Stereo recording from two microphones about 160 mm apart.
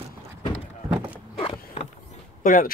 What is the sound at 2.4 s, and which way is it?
Speech, 60° left (ahead or behind).